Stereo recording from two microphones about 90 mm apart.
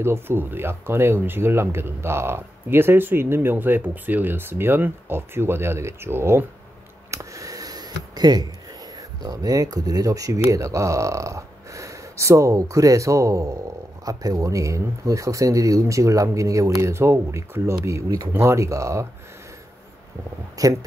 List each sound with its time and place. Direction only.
0.0 s speech: 25° right (ahead or behind)
7.1 s a sound: 35° right (ahead or behind)
8.9 s speech: 45° right (ahead or behind)
18.3 s speech: 30° right (ahead or behind)
20.5 s speech: 40° right (ahead or behind)